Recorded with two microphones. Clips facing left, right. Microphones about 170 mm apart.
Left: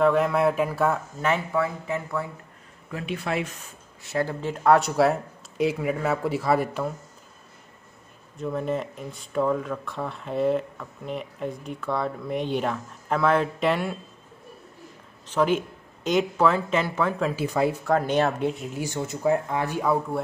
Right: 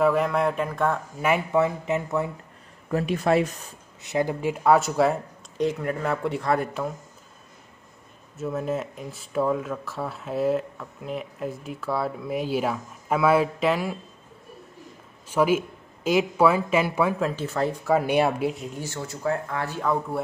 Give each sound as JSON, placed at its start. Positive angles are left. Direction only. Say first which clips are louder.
{"t": 0.0, "sound": "speech", "louder": "left 1 dB", "side_deg": 0}
{"t": 1.2, "sound": "speech", "louder": "right 3 dB", "side_deg": -10}
{"t": 2.9, "sound": "speech", "louder": "right 7 dB", "side_deg": -40}
{"t": 4.0, "sound": "speech", "louder": "right 2 dB", "side_deg": -15}
{"t": 8.4, "sound": "speech", "louder": "even", "side_deg": -5}
{"t": 15.2, "sound": "speech", "louder": "right 1 dB", "side_deg": -10}
{"t": 17.3, "sound": "speech", "louder": "left 2 dB", "side_deg": 10}
{"t": 17.8, "sound": "speech", "louder": "right 5 dB", "side_deg": -10}
{"t": 18.8, "sound": "speech", "louder": "left 4 dB", "side_deg": 15}